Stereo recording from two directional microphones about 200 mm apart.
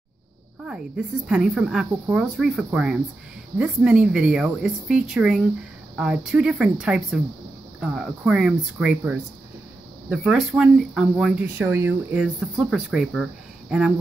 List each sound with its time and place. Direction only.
0.7 s speech: 5° right (ahead or behind)